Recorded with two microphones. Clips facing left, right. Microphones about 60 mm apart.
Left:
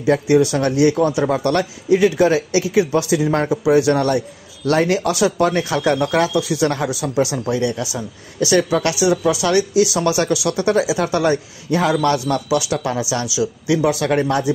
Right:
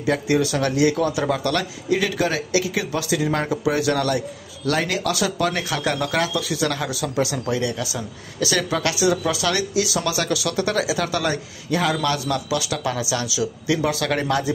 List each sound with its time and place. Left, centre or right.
0.0 s speech: left
4.6 s a man's voice: left
12.4 s a man's voice: left